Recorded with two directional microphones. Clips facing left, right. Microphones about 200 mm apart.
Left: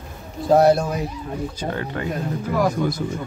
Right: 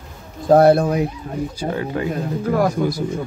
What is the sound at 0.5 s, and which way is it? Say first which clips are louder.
Speech: right 3 dB; 55° right (ahead or behind).